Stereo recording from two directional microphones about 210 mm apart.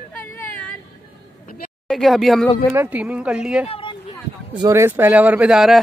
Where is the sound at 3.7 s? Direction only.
25° left (ahead or behind).